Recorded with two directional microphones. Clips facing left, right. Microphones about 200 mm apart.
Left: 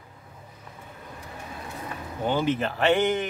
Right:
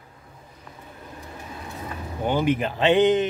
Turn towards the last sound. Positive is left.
turn(degrees=-20)  # may be behind; listen again after turning